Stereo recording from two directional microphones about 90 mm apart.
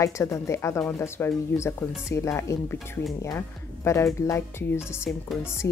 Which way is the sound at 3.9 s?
30° left (ahead or behind).